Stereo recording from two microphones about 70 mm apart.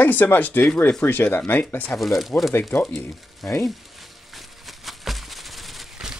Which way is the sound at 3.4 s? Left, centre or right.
Left.